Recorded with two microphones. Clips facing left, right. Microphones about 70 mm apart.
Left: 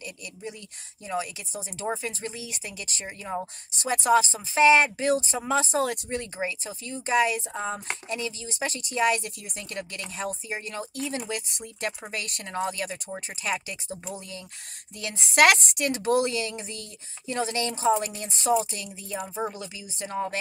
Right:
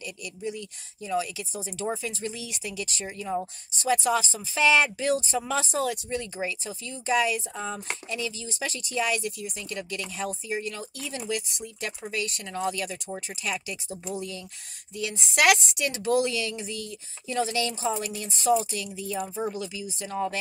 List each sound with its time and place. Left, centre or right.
0.0 s a sound: left
1.0 s speech: left
15.0 s speech: left